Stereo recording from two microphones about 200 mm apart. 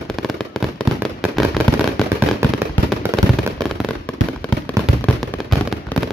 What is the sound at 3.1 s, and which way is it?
Fireworks, 15° right (ahead or behind).